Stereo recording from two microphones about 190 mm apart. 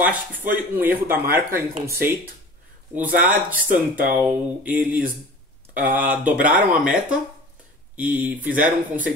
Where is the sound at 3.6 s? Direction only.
45° right (ahead or behind).